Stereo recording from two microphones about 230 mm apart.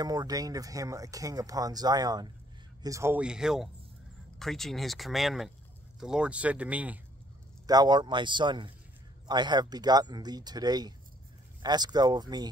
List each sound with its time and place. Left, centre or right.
0.0 s speech: centre
7.6 s speech: centre